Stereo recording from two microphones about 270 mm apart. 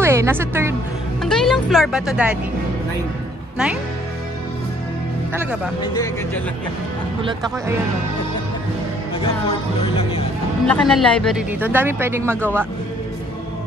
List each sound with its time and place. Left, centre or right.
0.0 s speech: centre
1.2 s speech: centre
5.3 s speech: centre
7.2 s speech: centre
9.2 s music: left
10.7 s speech: centre